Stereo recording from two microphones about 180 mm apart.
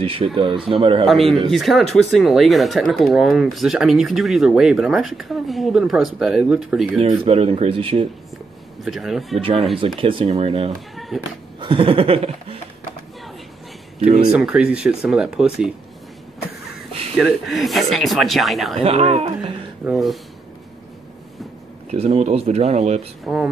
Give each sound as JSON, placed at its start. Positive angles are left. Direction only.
{"t": 0.0, "sound": "speech", "side_deg": -30}
{"t": 1.0, "sound": "speech", "side_deg": 0}
{"t": 7.0, "sound": "speech", "side_deg": -35}
{"t": 8.8, "sound": "speech", "side_deg": 0}
{"t": 9.9, "sound": "speech", "side_deg": -30}
{"t": 11.1, "sound": "speech", "side_deg": 0}
{"t": 11.6, "sound": "speech", "side_deg": -30}
{"t": 13.9, "sound": "speech", "side_deg": -40}
{"t": 14.3, "sound": "speech", "side_deg": -5}
{"t": 17.2, "sound": "speech", "side_deg": 0}
{"t": 18.8, "sound": "speech", "side_deg": -35}
{"t": 19.8, "sound": "speech", "side_deg": 0}
{"t": 21.9, "sound": "speech", "side_deg": -35}
{"t": 23.2, "sound": "speech", "side_deg": -5}